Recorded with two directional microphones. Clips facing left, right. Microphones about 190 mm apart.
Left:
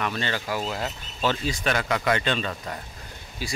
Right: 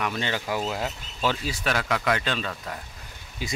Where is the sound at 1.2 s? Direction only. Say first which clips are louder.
Left 1 dB; 5° right (ahead or behind).